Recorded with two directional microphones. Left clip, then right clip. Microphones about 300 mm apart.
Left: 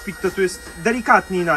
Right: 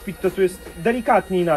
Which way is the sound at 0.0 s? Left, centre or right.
Centre.